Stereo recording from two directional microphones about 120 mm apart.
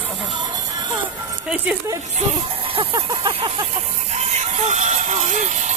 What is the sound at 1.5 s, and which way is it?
Speech, 10° right (ahead or behind).